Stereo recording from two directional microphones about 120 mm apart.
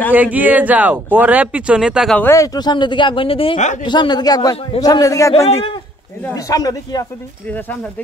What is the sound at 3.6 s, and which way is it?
Speech, 90° left.